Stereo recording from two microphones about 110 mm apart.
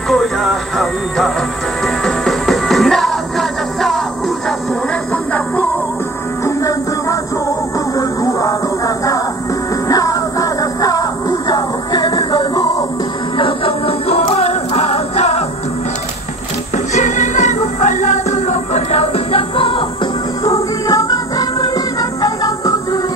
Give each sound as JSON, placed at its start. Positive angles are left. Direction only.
{"t": 0.1, "sound": "music", "side_deg": 5}
{"t": 5.1, "sound": "music", "side_deg": 15}
{"t": 6.4, "sound": "music", "side_deg": 30}
{"t": 13.4, "sound": "music", "side_deg": 60}
{"t": 16.7, "sound": "music", "side_deg": 90}
{"t": 20.4, "sound": "music", "side_deg": 30}